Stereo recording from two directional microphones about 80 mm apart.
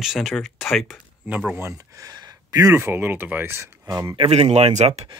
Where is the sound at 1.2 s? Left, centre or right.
Centre.